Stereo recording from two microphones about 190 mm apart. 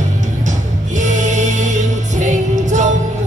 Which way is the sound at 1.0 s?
40° right (ahead or behind).